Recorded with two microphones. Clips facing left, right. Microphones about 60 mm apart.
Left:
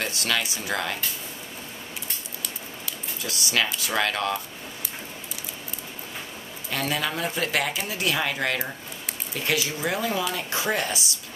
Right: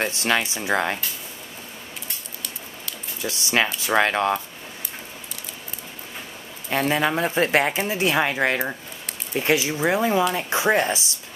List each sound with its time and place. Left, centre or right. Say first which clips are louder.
0.0 s speech: right 4 dB; right
3.2 s speech: right 4 dB; right
6.7 s speech: right 6 dB; right